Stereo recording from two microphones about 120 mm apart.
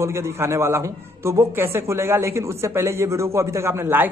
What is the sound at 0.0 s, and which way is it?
A man's voice, 25° right (ahead or behind).